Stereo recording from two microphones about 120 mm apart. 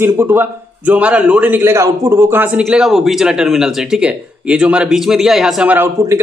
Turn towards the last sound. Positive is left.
turn(degrees=-20)  # may be behind; listen again after turning